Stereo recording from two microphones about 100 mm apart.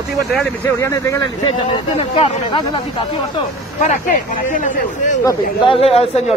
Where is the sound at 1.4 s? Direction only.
55° left (ahead or behind).